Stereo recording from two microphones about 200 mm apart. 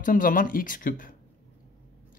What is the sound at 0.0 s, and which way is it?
Speech, 45° left (ahead or behind).